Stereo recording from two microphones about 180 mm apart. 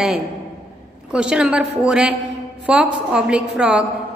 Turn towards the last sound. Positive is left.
turn(degrees=-5)  # may be behind; listen again after turning